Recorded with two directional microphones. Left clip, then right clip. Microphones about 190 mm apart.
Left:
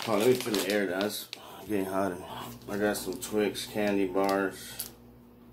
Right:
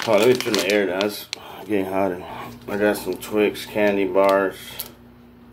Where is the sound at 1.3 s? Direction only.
45° right (ahead or behind).